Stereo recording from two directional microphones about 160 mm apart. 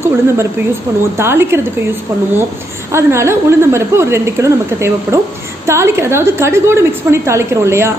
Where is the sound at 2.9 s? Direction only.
15° right (ahead or behind).